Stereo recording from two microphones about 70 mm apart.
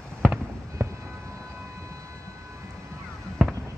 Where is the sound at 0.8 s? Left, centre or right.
Right.